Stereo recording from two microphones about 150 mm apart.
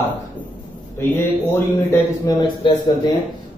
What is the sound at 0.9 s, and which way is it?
A man's voice, 15° left (ahead or behind).